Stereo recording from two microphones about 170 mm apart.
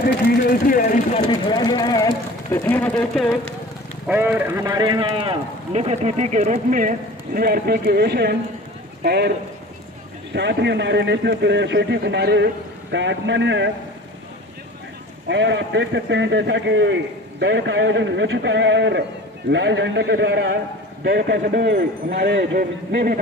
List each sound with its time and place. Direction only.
0.4 s speech: 55° left (ahead or behind)
1.2 s speech: 25° left (ahead or behind)
2.5 s speech: 10° left (ahead or behind)
4.1 s a man's voice: 10° right (ahead or behind)
4.6 s speech: 25° right (ahead or behind); by 9.3 s 75° right (ahead or behind)
10.3 s a man's voice: 85° right
15.2 s a man's voice: 90° right; by 20.5 s 70° right (ahead or behind)
21.0 s speech: 85° right; by 23.1 s 60° right (ahead or behind)